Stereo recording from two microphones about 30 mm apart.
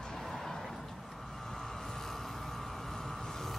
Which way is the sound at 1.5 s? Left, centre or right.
Centre.